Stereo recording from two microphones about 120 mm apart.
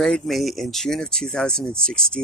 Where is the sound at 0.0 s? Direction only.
Centre (ahead or behind).